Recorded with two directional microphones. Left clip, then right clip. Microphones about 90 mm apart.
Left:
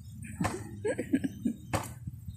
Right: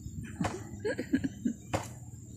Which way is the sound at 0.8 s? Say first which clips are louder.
Left 1 dB; 20° right (ahead or behind).